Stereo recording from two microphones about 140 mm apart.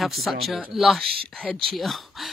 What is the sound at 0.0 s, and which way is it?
Speech, centre (ahead or behind).